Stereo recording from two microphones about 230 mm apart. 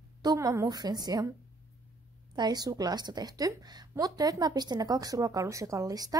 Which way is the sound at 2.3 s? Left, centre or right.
Centre.